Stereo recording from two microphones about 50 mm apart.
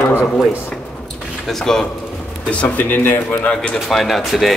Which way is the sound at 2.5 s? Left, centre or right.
Left.